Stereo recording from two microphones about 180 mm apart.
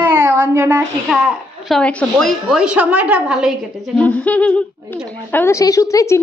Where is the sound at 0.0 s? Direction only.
10° right (ahead or behind).